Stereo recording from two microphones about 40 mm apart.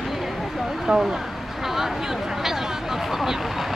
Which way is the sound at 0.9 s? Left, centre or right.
Right.